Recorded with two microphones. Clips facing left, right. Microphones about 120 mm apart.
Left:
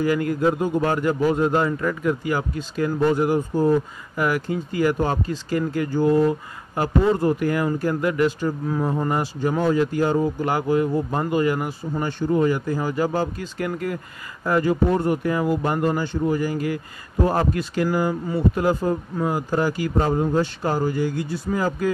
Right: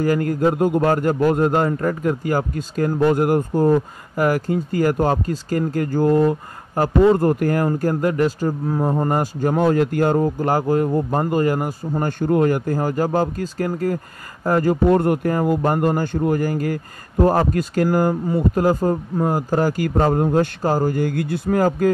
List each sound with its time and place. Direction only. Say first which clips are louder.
0.0 s speech: right 2 dB; 45° right (ahead or behind)